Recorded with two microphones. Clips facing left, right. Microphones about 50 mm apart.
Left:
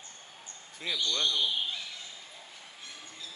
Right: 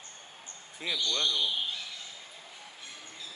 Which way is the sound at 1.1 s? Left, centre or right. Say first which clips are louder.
Left 1 dB; centre.